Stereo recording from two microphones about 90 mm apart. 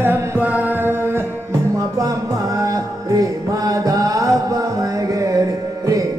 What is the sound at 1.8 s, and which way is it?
Music, 40° right (ahead or behind).